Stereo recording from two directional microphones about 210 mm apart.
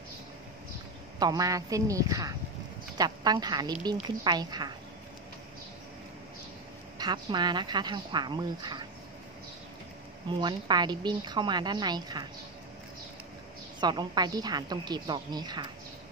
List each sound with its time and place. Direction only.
1.2 s a woman's voice: 15° right (ahead or behind)
7.0 s a woman's voice: 20° right (ahead or behind)
10.4 s a woman's voice: 20° right (ahead or behind)
13.7 s a woman's voice: 20° right (ahead or behind)